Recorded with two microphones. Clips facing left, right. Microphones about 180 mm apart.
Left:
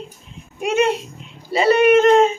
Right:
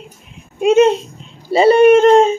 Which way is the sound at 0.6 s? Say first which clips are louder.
Right 8 dB; 20° right (ahead or behind).